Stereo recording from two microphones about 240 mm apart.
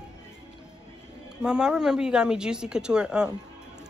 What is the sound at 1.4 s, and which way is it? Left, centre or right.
Speech, centre.